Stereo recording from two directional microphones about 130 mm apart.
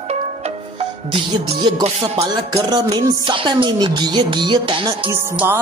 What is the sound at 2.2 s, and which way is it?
Speech, 30° right (ahead or behind).